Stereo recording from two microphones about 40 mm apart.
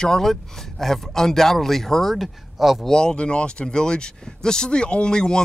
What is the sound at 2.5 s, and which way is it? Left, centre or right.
Speech, centre.